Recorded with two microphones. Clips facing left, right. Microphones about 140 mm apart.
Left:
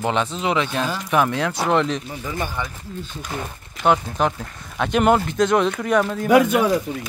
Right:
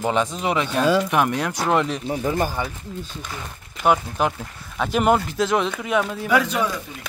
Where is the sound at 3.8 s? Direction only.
5° right (ahead or behind).